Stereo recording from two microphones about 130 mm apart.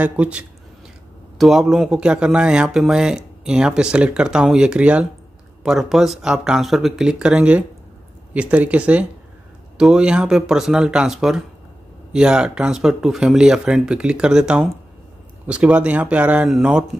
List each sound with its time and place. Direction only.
0.0 s speech: 10° right (ahead or behind)